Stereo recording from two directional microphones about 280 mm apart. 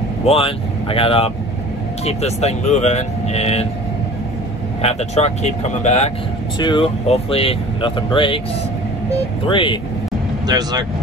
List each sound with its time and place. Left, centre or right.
0.2 s speech: centre
4.8 s speech: left
9.5 s speech: centre
10.4 s speech: centre